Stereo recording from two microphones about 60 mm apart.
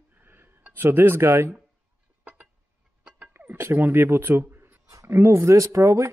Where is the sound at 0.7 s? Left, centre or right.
Right.